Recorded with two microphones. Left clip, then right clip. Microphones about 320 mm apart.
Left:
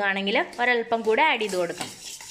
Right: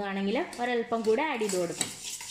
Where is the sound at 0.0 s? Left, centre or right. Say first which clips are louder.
Left 7 dB; left.